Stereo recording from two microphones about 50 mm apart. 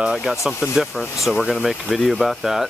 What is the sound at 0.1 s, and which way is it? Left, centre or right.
Speech, centre.